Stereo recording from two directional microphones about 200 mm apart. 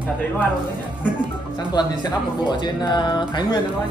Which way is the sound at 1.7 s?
20° left (ahead or behind).